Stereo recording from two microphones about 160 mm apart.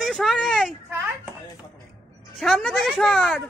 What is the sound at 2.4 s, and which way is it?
Speech, centre (ahead or behind).